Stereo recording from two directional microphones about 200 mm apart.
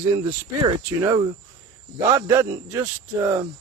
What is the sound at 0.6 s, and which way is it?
Speech, 15° right (ahead or behind).